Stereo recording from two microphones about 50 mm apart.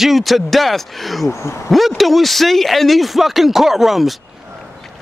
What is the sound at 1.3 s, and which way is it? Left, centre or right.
Speech, left.